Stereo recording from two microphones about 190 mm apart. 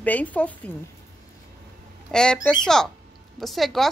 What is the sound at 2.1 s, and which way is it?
A woman's voice, 5° left (ahead or behind).